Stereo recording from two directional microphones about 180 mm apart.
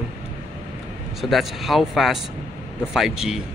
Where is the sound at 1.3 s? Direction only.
Centre (ahead or behind).